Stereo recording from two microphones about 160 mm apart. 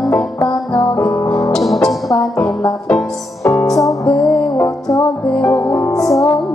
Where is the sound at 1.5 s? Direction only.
Centre (ahead or behind).